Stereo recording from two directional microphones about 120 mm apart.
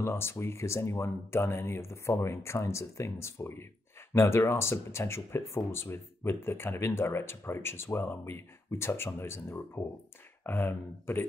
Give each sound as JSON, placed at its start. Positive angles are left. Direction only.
{"t": 0.0, "sound": "speech", "side_deg": 20}